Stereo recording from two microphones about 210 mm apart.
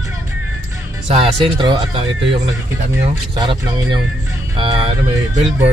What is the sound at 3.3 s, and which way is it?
Speech, 20° right (ahead or behind).